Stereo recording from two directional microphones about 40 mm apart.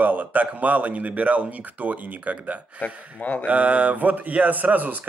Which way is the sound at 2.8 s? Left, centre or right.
Left.